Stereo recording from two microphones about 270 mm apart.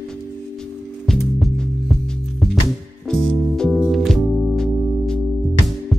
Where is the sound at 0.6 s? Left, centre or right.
Centre.